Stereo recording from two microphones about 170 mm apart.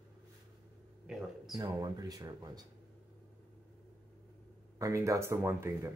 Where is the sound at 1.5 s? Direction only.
20° right (ahead or behind).